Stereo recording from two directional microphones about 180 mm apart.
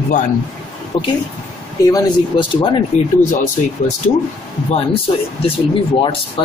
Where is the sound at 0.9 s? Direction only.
30° left (ahead or behind).